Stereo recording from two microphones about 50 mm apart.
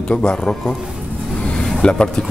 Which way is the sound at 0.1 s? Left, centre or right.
Centre.